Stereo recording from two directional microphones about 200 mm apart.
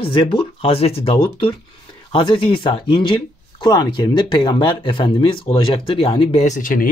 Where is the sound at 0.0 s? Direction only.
25° left (ahead or behind).